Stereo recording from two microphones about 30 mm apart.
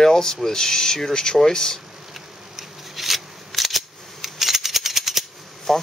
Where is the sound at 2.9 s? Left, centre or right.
Centre.